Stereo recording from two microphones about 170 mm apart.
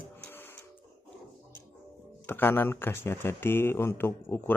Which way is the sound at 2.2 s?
15° left (ahead or behind).